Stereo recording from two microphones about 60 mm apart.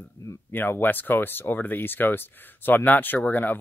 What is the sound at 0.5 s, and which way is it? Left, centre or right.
Speech, left.